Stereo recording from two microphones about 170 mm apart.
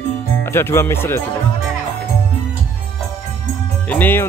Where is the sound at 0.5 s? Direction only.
15° left (ahead or behind).